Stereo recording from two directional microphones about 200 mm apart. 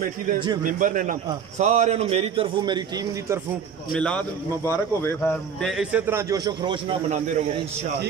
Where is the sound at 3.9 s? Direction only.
5° left (ahead or behind).